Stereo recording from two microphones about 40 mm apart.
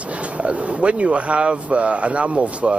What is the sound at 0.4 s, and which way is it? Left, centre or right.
Speech, right.